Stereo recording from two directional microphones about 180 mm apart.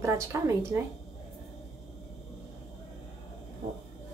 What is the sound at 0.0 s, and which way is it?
Speech, 15° right (ahead or behind).